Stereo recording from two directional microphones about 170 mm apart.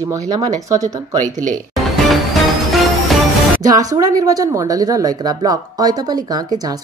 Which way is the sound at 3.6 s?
20° right (ahead or behind).